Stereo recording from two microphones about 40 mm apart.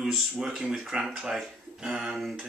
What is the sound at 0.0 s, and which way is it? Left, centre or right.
Speech, centre.